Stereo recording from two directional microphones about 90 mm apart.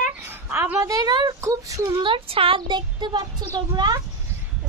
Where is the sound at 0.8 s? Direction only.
50° right (ahead or behind).